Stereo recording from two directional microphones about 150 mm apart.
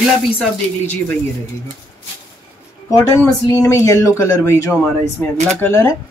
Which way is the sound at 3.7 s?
20° left (ahead or behind).